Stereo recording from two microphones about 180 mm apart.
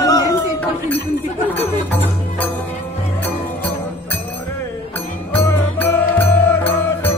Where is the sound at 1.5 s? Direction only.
10° left (ahead or behind).